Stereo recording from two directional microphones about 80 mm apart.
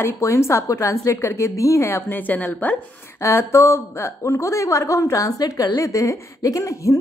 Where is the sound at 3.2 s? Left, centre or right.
Left.